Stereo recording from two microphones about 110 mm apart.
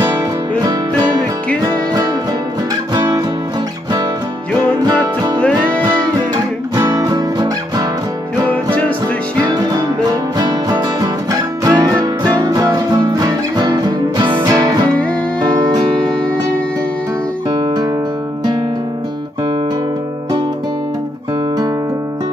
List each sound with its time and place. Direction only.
0.0 s music: 35° right (ahead or behind)
2.9 s music: 40° right (ahead or behind)
5.0 s music: 40° right (ahead or behind)
9.4 s music: 35° right (ahead or behind)